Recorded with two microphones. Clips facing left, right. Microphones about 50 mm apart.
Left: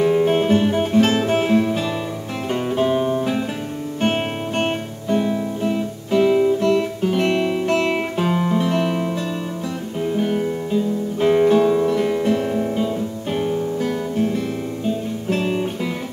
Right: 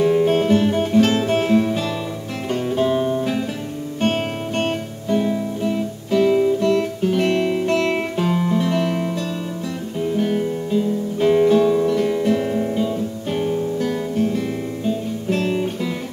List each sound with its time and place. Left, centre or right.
0.0 s music: centre
10.1 s music: centre